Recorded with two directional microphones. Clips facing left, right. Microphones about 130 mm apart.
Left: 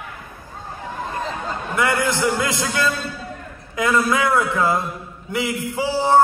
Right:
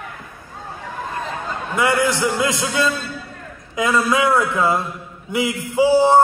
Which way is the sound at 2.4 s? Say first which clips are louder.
Right 2 dB; 15° right (ahead or behind).